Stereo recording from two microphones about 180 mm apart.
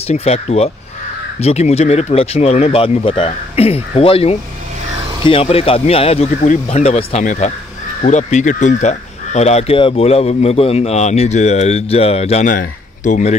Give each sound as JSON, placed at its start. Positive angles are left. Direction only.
{"t": 0.1, "sound": "speech", "side_deg": 35}